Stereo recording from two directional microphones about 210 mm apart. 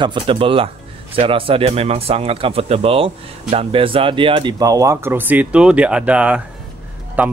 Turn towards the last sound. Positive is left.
turn(degrees=-10)  # may be behind; listen again after turning